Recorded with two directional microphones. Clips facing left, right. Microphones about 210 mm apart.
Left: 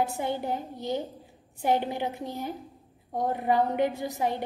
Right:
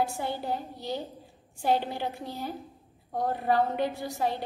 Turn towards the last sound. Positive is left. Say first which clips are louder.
# left 1 dB
turn(degrees=20)  # may be behind; listen again after turning